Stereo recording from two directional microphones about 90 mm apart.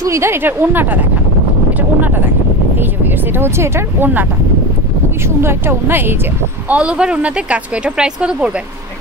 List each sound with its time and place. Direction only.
0.0 s speech: 30° right (ahead or behind)
5.4 s speech: 25° right (ahead or behind)
6.7 s speech: 15° right (ahead or behind)